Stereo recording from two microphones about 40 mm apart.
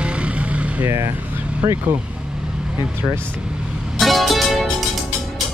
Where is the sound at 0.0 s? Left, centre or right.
Right.